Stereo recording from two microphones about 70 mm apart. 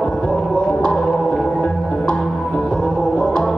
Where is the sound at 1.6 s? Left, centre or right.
Left.